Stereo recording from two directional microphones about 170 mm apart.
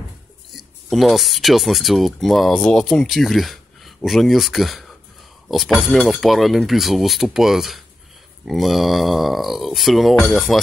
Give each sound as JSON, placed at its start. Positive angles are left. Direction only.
{"t": 0.6, "sound": "speech", "side_deg": 0}